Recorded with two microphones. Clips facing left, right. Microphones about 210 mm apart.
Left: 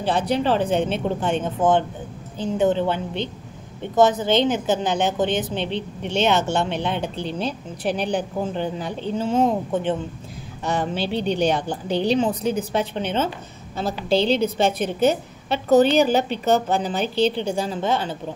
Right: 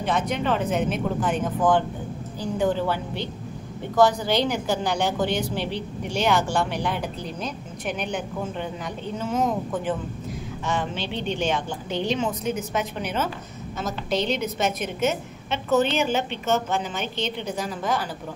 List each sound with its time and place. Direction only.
0.0 s a woman's voice: 30° left (ahead or behind)
10.6 s a woman's voice: 40° left (ahead or behind)